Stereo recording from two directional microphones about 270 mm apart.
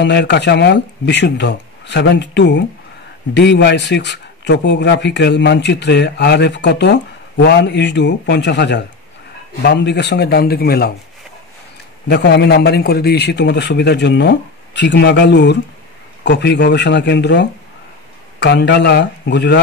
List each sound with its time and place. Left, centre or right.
0.0 s speech: left
12.1 s speech: left